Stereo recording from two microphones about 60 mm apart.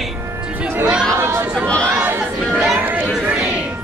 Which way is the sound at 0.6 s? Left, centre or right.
Right.